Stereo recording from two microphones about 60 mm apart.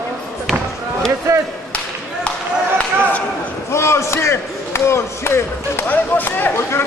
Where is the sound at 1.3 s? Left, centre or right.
Right.